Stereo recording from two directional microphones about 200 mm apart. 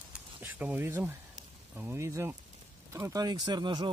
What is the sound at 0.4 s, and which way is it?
Speech, 10° right (ahead or behind).